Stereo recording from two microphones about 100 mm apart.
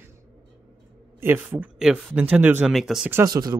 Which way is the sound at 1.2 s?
20° right (ahead or behind).